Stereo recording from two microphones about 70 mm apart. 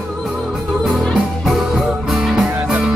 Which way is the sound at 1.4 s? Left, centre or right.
Centre.